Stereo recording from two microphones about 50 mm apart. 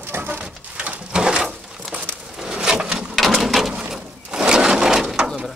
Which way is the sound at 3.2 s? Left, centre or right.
Centre.